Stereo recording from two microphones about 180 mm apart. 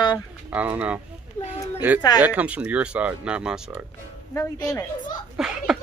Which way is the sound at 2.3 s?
5° right (ahead or behind).